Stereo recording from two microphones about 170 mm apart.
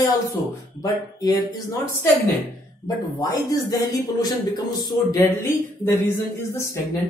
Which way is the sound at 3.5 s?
20° left (ahead or behind).